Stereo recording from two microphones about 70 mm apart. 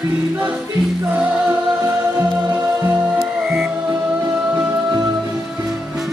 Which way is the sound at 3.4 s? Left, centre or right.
Centre.